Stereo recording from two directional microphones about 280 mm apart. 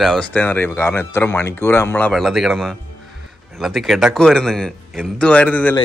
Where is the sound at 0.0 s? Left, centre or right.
Centre.